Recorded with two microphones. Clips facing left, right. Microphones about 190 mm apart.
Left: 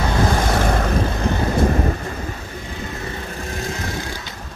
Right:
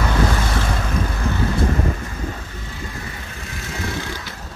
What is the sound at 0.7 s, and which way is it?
Vehicle, 55° left (ahead or behind).